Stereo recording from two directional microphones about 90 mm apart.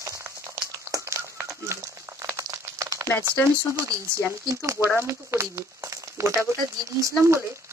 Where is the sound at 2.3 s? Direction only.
35° right (ahead or behind).